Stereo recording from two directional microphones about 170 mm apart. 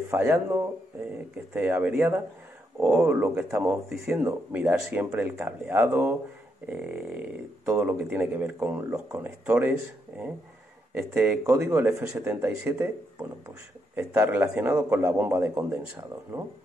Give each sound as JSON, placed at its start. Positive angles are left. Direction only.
{"t": 0.1, "sound": "speech", "side_deg": -10}